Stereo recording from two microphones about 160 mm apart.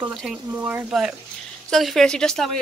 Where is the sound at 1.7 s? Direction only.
Centre (ahead or behind).